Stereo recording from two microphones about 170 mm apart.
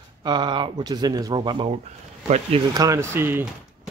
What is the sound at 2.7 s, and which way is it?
Speech, 20° right (ahead or behind).